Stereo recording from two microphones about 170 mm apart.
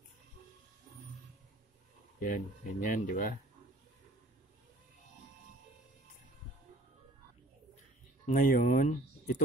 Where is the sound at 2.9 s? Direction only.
55° left (ahead or behind).